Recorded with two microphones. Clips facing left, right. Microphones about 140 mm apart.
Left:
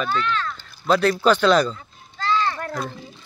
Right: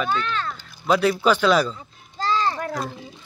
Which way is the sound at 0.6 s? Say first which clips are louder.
Even; 10° right (ahead or behind).